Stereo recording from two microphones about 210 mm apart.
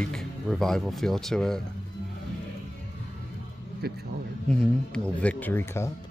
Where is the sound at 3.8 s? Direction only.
50° right (ahead or behind).